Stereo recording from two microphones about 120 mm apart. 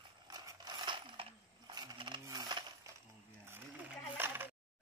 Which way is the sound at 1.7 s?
35° right (ahead or behind).